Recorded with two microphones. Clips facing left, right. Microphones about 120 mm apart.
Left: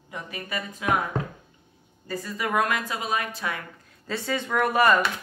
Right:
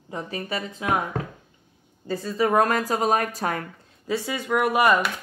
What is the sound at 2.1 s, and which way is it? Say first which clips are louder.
A woman's voice: right 6 dB; 30° right (ahead or behind).